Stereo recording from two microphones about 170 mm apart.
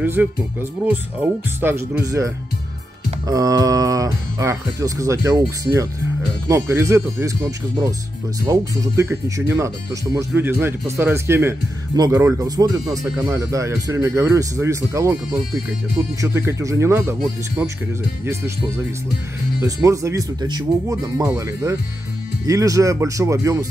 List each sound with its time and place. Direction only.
0.0 s speech: 10° right (ahead or behind)
8.5 s speech: 20° right (ahead or behind)
16.2 s speech: 15° right (ahead or behind)
19.6 s speech: 20° right (ahead or behind)